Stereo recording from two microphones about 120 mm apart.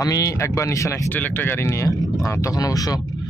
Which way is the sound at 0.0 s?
30° left (ahead or behind).